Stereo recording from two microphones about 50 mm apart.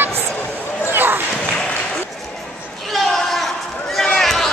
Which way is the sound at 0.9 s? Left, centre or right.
Right.